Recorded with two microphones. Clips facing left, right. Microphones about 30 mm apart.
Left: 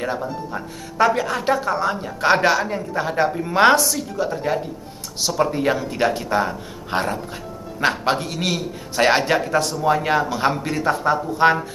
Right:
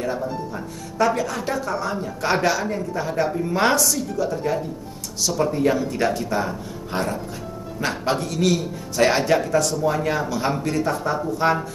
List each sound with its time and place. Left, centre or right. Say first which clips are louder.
0.0 s a woman's voice: even; left
10.5 s a woman's voice: left 1 dB; centre